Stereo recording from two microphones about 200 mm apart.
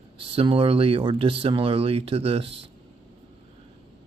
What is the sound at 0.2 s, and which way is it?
Speech, 25° right (ahead or behind).